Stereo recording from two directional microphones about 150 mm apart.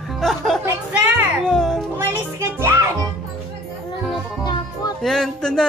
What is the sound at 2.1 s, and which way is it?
Music, 15° right (ahead or behind).